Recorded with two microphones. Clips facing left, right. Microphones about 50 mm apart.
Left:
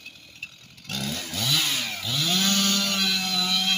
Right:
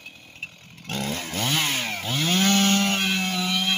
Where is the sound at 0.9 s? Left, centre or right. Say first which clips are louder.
Right 3 dB; right.